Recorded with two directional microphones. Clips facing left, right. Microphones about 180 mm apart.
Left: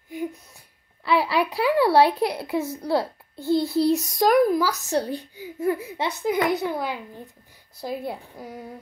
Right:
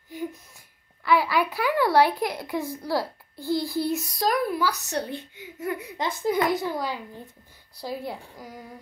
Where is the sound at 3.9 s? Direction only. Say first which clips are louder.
Left 7 dB; 45° left (ahead or behind).